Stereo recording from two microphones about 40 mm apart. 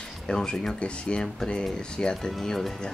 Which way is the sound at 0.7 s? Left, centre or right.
Left.